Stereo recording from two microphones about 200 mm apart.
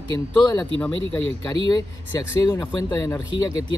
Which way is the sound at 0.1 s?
10° left (ahead or behind).